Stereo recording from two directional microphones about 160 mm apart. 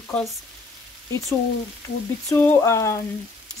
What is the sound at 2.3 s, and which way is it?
Speech, 15° left (ahead or behind).